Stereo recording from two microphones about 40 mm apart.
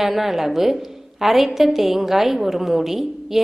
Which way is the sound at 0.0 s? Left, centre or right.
Centre.